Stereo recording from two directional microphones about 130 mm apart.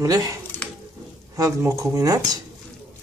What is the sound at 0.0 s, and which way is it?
Speech, 25° right (ahead or behind).